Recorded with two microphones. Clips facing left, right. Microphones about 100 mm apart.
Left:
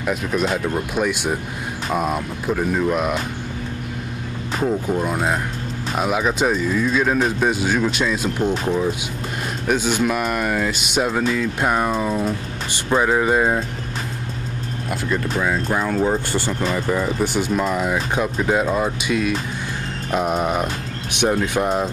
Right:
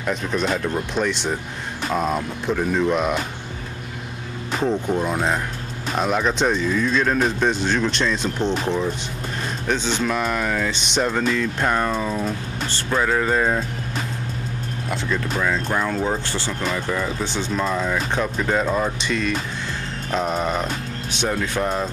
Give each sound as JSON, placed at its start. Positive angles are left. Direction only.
{"t": 0.0, "sound": "speech", "side_deg": 5}
{"t": 4.6, "sound": "speech", "side_deg": 5}
{"t": 14.9, "sound": "speech", "side_deg": 10}